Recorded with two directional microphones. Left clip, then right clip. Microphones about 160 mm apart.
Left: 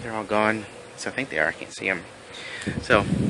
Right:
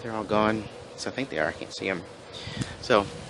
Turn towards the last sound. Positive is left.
turn(degrees=-10)  # may be behind; listen again after turning